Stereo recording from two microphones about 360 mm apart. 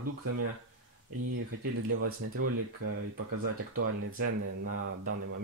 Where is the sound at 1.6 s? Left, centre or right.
Right.